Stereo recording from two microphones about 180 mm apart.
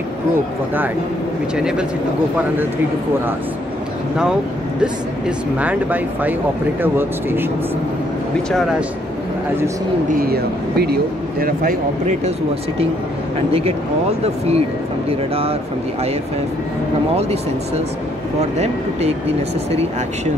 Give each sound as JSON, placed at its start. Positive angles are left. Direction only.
{"t": 1.6, "sound": "speech", "side_deg": -5}
{"t": 5.6, "sound": "speech", "side_deg": -10}
{"t": 8.5, "sound": "speech", "side_deg": 0}
{"t": 10.1, "sound": "a man's voice", "side_deg": -60}
{"t": 13.5, "sound": "speech", "side_deg": -35}
{"t": 17.1, "sound": "speech", "side_deg": -35}